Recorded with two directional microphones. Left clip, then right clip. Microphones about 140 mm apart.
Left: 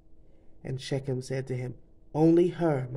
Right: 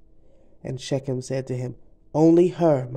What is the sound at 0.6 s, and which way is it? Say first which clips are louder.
Speech: right 6 dB; 35° right (ahead or behind).